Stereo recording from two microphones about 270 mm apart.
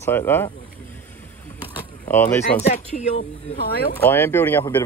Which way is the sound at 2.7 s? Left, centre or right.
Left.